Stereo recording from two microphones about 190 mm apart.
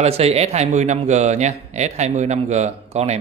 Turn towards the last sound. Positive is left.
turn(degrees=-35)  # may be behind; listen again after turning